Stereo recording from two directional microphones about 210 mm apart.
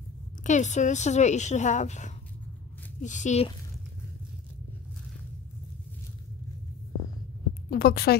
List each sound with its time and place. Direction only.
0.4 s a woman's voice: 35° left (ahead or behind)
7.7 s a woman's voice: 45° left (ahead or behind)